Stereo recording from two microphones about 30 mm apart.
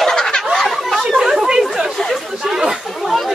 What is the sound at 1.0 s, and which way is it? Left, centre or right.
Chatter, centre.